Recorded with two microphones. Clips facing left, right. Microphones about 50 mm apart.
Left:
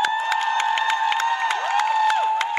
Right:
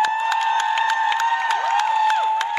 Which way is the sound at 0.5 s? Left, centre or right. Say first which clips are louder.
Right 1 dB; left.